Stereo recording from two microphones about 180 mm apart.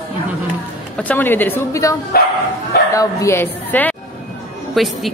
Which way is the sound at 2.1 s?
55° left (ahead or behind).